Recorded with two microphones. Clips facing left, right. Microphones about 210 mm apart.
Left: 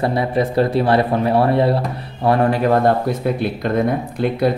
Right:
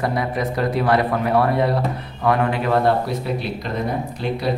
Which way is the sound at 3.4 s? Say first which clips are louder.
Left 7 dB; 55° left (ahead or behind).